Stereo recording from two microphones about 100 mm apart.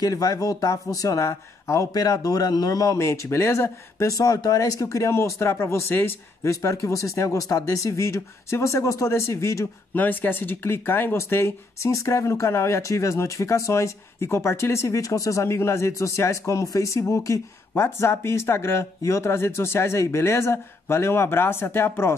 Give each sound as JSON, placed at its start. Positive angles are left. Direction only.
{"t": 0.0, "sound": "speech", "side_deg": 35}
{"t": 9.9, "sound": "speech", "side_deg": 20}